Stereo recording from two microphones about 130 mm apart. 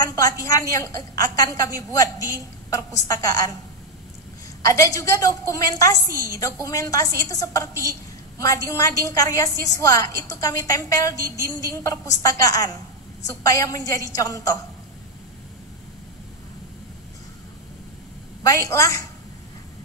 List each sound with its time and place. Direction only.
0.0 s a woman's voice: 30° left (ahead or behind)
4.6 s a woman's voice: 25° left (ahead or behind)
18.4 s a woman's voice: 25° left (ahead or behind)